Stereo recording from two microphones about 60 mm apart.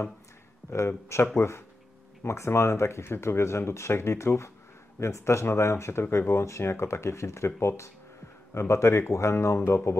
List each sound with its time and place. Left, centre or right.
0.8 s speech: left